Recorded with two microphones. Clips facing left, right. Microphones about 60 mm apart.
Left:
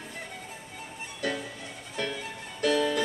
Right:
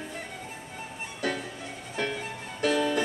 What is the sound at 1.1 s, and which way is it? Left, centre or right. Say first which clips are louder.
Music: right 1 dB; right.